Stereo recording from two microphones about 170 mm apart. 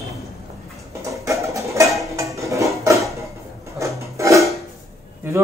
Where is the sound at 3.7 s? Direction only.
20° right (ahead or behind).